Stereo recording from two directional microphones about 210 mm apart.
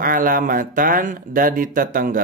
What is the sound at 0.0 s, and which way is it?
Speech, 40° right (ahead or behind).